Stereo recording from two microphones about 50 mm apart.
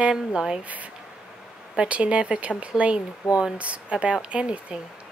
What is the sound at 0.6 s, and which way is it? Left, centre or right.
Speech, right.